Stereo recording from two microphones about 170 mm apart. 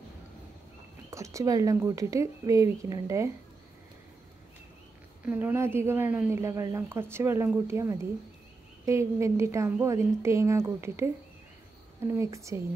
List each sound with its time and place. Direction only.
1.1 s speech: 20° right (ahead or behind)
5.2 s speech: 10° right (ahead or behind)
12.1 s speech: 15° right (ahead or behind)